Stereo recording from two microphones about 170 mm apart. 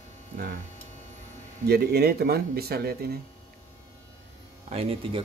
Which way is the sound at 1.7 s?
70° right (ahead or behind).